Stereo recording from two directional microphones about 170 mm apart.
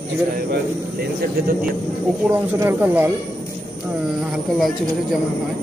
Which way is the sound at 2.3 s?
15° right (ahead or behind).